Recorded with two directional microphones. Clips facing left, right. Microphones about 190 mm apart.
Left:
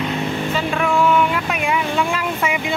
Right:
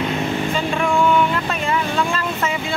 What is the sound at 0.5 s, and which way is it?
Vehicle, 5° left (ahead or behind).